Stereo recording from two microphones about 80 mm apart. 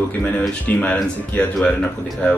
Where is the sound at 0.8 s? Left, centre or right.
Centre.